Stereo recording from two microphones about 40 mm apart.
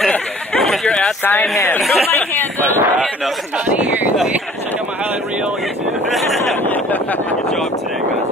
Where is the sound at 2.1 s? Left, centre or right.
Left.